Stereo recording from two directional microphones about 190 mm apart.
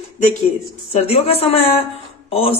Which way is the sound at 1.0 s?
30° left (ahead or behind).